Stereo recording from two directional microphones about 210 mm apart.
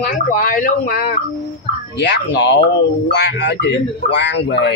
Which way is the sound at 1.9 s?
55° left (ahead or behind).